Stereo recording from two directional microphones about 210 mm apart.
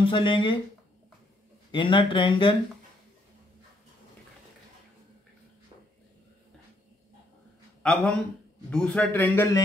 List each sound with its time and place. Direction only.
0.0 s speech: 25° left (ahead or behind)
1.7 s speech: 25° left (ahead or behind)
7.8 s a man's voice: centre (ahead or behind)